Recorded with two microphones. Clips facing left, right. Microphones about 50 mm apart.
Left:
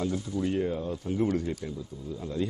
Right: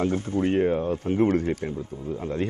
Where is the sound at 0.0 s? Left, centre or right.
Right.